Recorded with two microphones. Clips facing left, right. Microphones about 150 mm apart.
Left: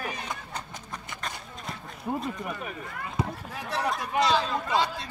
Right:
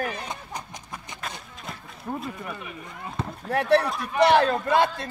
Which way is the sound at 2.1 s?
15° left (ahead or behind).